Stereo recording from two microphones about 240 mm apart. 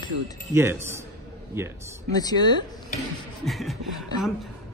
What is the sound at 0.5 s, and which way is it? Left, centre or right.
Speech, centre.